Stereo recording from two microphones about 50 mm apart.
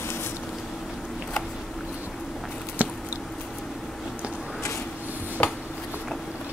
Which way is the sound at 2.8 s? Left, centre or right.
Right.